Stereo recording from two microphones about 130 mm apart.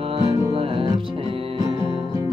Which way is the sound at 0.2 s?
45° right (ahead or behind).